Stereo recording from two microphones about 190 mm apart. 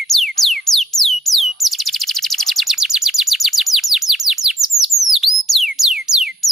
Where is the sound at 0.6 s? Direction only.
Centre (ahead or behind).